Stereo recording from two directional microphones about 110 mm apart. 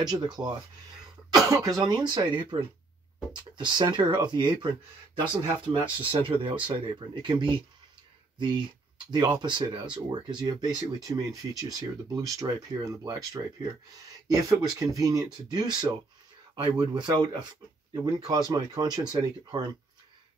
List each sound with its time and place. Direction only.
0.0 s speech: 40° right (ahead or behind)
16.9 s speech: 40° right (ahead or behind)